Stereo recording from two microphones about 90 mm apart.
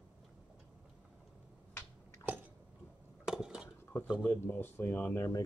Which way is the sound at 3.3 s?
5° right (ahead or behind).